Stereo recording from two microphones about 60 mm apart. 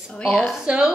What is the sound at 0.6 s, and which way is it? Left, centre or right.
Speech, centre.